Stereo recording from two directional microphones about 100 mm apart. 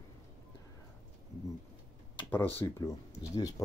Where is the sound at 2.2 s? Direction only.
20° left (ahead or behind).